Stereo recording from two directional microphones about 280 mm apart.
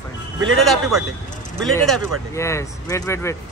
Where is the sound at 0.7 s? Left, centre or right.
Centre.